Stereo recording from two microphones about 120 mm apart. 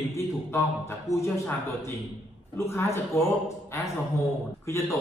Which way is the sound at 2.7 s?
20° left (ahead or behind).